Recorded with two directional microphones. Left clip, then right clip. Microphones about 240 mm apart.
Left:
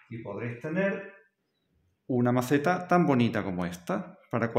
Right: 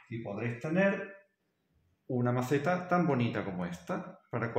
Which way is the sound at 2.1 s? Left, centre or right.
Left.